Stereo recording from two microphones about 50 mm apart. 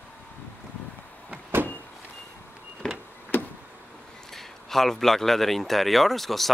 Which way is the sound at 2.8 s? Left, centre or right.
Centre.